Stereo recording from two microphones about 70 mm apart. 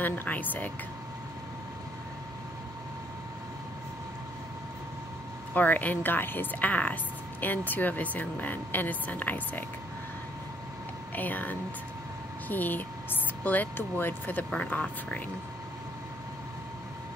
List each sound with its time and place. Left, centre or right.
0.0 s speech: left
5.5 s speech: left
11.1 s speech: left
14.5 s speech: centre